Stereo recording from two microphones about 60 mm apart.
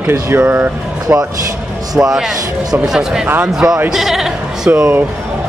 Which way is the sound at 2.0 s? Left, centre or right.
Centre.